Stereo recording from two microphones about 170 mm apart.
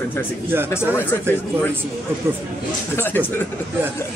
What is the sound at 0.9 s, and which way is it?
Speech, 10° left (ahead or behind).